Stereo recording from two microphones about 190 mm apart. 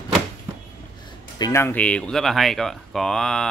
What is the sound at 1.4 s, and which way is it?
Speech, 15° left (ahead or behind).